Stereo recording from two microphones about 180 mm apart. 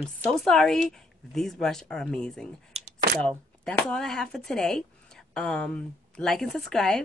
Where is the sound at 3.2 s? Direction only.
5° left (ahead or behind).